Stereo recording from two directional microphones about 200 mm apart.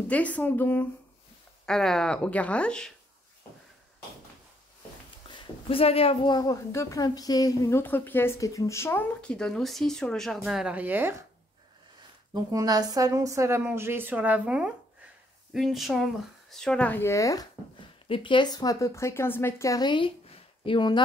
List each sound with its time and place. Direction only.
0.1 s a woman's voice: 5° left (ahead or behind)
5.3 s a woman's voice: 25° left (ahead or behind); by 11.2 s 10° right (ahead or behind)
12.4 s a woman's voice: 20° right (ahead or behind); by 21.0 s 25° left (ahead or behind)